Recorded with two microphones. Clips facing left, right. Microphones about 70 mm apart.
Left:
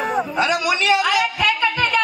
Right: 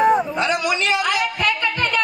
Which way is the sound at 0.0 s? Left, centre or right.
Centre.